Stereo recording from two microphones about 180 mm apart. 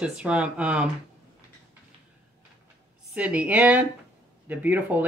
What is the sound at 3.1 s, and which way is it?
Speech, 5° right (ahead or behind).